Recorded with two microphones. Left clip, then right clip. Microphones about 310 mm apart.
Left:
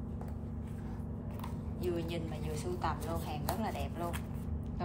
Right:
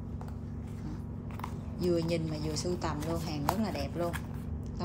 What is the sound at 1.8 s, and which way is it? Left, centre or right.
A woman's voice, centre.